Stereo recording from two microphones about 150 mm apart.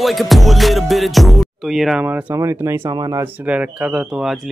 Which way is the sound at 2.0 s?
10° right (ahead or behind).